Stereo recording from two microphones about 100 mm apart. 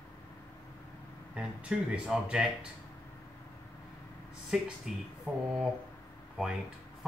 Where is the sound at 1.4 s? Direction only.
10° right (ahead or behind).